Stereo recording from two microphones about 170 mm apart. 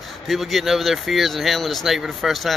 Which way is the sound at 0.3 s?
Centre (ahead or behind).